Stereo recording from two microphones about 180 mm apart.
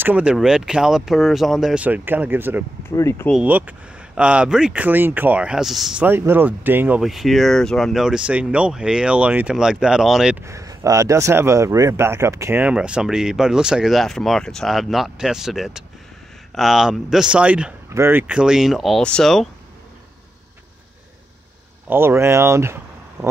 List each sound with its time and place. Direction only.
0.0 s speech: 5° right (ahead or behind)
3.0 s speech: 15° left (ahead or behind)
3.3 s speech: 5° right (ahead or behind)
10.4 s speech: 15° right (ahead or behind); by 19.5 s centre (ahead or behind)
21.8 s speech: 10° right (ahead or behind)